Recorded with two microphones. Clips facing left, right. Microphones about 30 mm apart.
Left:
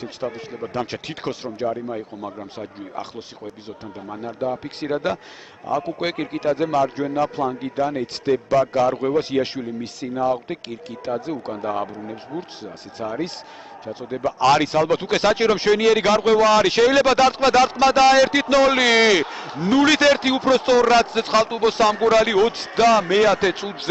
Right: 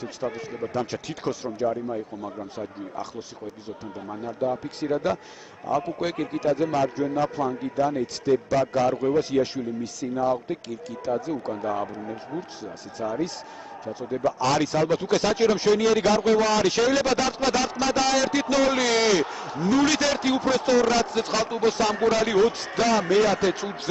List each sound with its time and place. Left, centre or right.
0.7 s a man's voice: left
1.7 s speech: left
4.2 s a man's voice: left
13.0 s a man's voice: left
14.4 s a man's voice: left
21.8 s speech: left
22.1 s a man's voice: left